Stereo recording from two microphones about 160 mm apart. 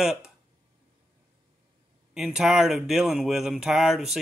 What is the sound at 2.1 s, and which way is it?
Speech, centre (ahead or behind).